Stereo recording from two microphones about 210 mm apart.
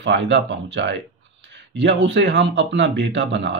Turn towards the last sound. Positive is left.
turn(degrees=-55)  # may be behind; listen again after turning